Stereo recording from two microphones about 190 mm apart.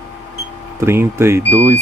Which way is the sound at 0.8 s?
15° right (ahead or behind).